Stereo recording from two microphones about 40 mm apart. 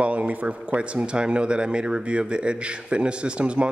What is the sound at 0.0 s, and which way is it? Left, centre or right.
Speech, right.